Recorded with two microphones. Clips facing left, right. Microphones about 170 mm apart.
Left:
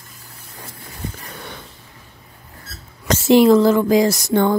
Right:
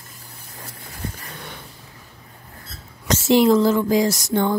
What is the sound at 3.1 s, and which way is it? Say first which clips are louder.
Speech: left 4 dB; 60° left (ahead or behind).